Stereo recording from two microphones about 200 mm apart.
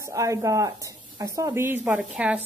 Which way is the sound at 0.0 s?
15° right (ahead or behind).